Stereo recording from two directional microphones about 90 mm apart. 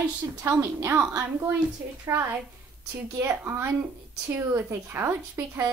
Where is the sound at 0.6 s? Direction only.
30° right (ahead or behind).